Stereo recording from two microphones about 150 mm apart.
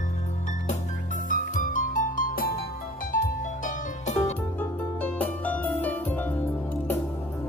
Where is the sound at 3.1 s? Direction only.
55° left (ahead or behind).